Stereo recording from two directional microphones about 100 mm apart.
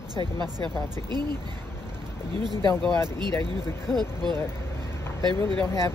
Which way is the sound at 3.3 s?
25° left (ahead or behind).